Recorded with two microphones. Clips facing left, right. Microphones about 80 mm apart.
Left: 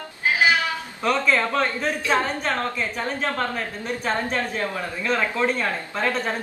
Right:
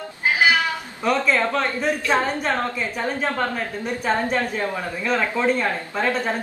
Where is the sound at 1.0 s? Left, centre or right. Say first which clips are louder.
Right 1 dB; centre.